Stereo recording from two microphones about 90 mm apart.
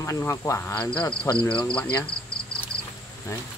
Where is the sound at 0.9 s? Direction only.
50° left (ahead or behind).